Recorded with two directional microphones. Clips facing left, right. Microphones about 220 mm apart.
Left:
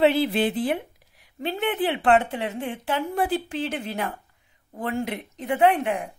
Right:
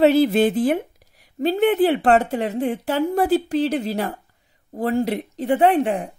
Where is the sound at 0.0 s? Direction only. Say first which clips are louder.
Right 5 dB; 45° right (ahead or behind).